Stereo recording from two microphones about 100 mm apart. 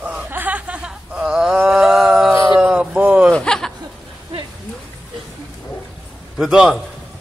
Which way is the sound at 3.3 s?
5° left (ahead or behind).